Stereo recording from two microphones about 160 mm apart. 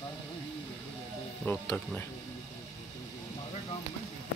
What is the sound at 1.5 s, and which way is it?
Speech, 15° left (ahead or behind).